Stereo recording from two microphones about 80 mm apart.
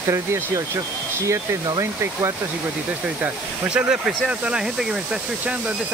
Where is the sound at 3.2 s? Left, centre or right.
Centre.